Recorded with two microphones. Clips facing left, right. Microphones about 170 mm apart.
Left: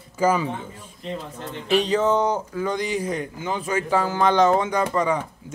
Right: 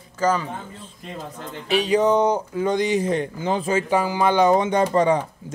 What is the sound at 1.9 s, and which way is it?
Speech, 15° right (ahead or behind).